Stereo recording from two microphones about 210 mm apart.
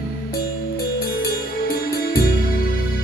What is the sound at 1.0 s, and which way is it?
Music, 45° left (ahead or behind).